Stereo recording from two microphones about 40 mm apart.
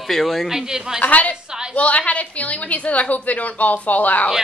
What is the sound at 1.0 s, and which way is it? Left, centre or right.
Speech, left.